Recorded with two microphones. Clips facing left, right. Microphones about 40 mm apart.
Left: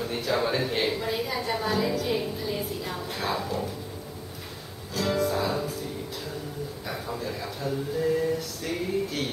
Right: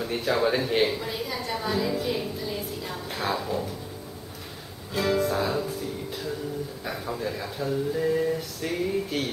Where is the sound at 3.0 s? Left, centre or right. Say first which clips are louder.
Right 2 dB; centre.